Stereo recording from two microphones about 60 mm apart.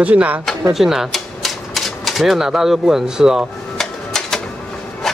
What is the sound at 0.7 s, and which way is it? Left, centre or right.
Speech, centre.